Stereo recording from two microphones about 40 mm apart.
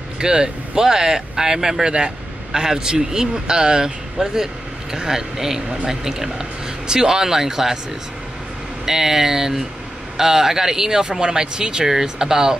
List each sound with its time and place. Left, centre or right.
0.2 s speech: centre
8.8 s speech: centre